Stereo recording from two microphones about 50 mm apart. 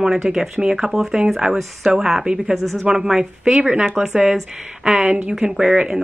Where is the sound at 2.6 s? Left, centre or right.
Right.